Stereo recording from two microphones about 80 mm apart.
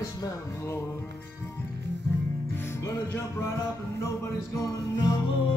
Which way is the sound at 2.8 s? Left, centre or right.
Left.